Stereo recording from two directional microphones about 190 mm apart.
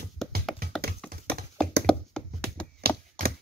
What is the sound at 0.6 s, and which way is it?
Tap, 55° right (ahead or behind).